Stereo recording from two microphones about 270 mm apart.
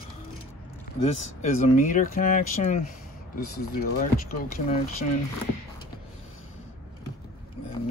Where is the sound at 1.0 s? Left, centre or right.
Left.